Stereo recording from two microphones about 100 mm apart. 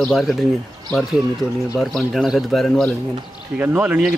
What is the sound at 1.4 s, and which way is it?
Speech, 30° left (ahead or behind).